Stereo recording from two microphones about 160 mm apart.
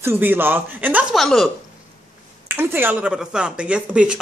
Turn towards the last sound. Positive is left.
turn(degrees=-5)  # may be behind; listen again after turning